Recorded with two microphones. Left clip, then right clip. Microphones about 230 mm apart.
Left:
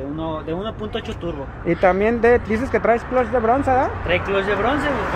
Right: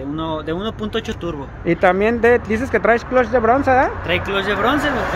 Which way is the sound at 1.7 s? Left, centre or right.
Centre.